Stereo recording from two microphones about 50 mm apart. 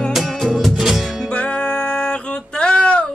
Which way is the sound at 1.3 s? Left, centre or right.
Left.